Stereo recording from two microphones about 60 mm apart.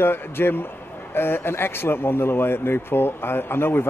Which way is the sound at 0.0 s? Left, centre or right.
Left.